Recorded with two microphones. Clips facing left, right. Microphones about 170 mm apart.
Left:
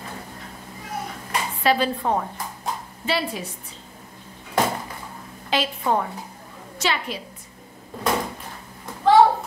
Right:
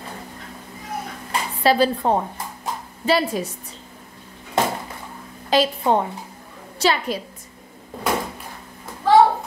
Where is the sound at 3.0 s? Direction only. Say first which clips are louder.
Right 6 dB; 45° right (ahead or behind).